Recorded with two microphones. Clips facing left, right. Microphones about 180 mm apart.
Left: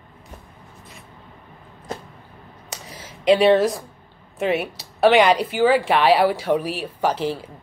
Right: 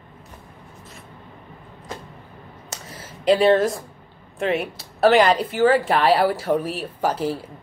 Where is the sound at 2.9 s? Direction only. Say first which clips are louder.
Left 1 dB; 5° left (ahead or behind).